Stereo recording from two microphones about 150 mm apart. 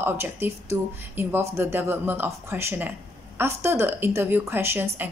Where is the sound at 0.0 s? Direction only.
15° right (ahead or behind).